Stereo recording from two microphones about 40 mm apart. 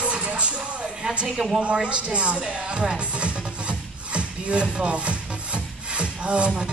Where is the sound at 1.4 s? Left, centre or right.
Centre.